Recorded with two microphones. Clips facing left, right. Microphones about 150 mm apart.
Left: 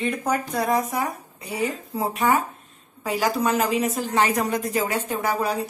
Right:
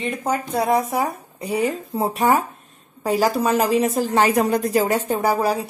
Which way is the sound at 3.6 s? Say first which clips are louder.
Right 4 dB; 35° right (ahead or behind).